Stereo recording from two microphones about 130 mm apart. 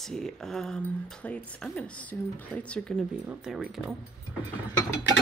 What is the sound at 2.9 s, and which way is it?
Speech, centre (ahead or behind).